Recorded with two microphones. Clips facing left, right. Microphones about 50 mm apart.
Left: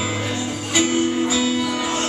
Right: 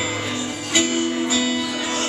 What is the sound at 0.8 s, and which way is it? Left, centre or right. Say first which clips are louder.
Music: left 3 dB; centre.